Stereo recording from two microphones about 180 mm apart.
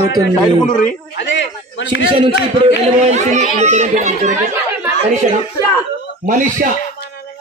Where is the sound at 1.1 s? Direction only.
90° left.